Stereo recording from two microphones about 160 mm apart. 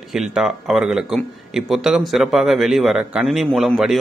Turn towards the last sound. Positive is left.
turn(degrees=0)  # may be behind; listen again after turning